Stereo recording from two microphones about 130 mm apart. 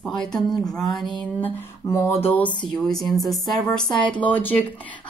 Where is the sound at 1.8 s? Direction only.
20° left (ahead or behind).